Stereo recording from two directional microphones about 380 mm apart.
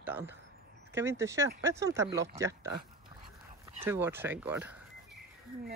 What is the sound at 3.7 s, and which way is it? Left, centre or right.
Speech, centre.